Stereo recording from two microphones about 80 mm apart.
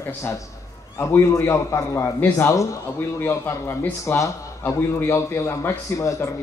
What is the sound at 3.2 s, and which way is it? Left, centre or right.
A man's voice, left.